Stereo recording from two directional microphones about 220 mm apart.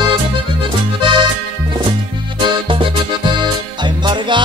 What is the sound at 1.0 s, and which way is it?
Music, 20° right (ahead or behind).